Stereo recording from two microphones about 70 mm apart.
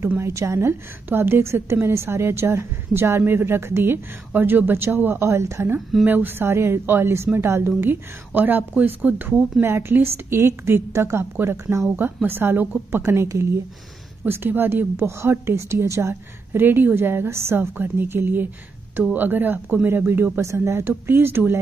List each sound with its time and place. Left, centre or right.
0.2 s a woman's voice: right
6.0 s a woman's voice: right
12.0 s a woman's voice: right
20.3 s a woman's voice: right